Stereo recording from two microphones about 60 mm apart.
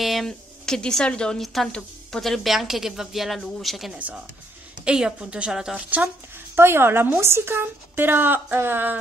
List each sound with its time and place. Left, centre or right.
0.0 s speech: centre
1.4 s a woman's voice: centre
3.9 s a woman's voice: centre
5.8 s speech: right
6.5 s a woman's voice: right